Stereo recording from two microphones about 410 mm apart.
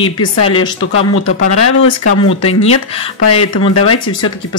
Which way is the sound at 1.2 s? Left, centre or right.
Left.